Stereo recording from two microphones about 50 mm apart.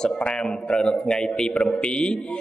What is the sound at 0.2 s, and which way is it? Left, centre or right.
A man's voice, centre.